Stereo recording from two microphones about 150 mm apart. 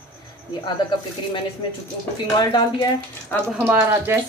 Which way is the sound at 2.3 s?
30° left (ahead or behind).